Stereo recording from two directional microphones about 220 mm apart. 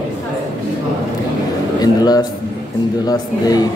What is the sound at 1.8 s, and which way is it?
Speech, 15° left (ahead or behind).